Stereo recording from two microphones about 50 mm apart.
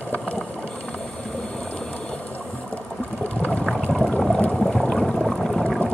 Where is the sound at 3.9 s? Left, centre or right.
Centre.